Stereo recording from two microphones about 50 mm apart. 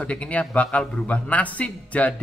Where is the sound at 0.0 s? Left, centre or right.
Left.